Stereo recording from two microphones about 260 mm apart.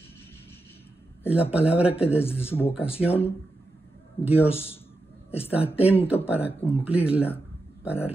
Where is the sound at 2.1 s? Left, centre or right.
Centre.